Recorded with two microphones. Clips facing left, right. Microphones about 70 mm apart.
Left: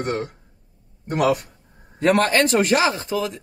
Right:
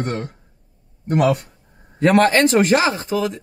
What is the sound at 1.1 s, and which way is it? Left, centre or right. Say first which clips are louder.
Speech: right 2 dB; centre.